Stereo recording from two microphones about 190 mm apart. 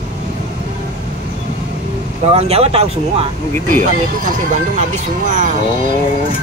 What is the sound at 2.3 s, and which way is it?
Speech, 30° right (ahead or behind).